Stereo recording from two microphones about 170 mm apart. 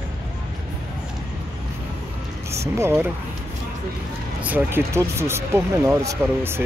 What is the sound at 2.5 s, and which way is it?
Speech, 15° right (ahead or behind).